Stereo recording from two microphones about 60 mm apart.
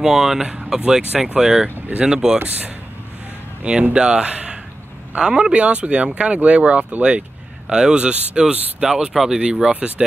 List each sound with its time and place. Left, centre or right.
0.0 s speech: centre
2.3 s speech: right
3.9 s speech: centre